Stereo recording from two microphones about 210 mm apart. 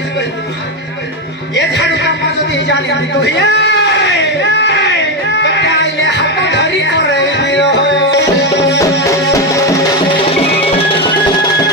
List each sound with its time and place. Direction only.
1.5 s speech: 55° left (ahead or behind)
2.7 s a sound: 55° left (ahead or behind)
9.1 s music: 15° left (ahead or behind)
10.8 s music: 25° left (ahead or behind)